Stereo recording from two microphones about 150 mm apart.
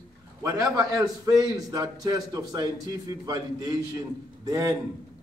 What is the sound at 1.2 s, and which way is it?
A man's voice, 25° right (ahead or behind).